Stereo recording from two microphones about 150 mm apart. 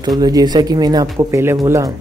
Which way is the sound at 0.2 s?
25° right (ahead or behind).